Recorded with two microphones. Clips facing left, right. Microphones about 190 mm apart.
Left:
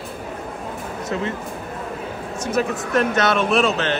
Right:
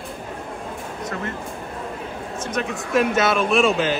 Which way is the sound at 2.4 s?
5° left (ahead or behind).